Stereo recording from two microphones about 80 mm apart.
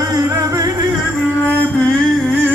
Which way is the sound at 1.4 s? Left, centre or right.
Centre.